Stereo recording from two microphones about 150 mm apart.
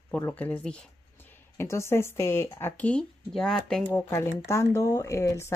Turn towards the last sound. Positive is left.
turn(degrees=20)  # may be behind; listen again after turning